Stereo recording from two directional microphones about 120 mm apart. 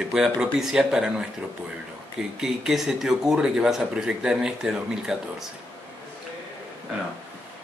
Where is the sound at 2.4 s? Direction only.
5° right (ahead or behind).